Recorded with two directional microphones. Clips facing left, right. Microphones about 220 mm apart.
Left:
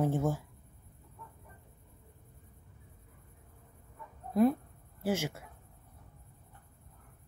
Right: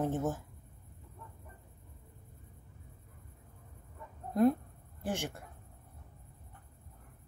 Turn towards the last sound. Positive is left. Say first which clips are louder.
# left 4 dB
turn(degrees=5)  # may be behind; listen again after turning